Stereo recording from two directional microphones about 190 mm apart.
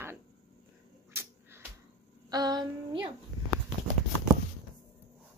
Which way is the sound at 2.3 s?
20° right (ahead or behind).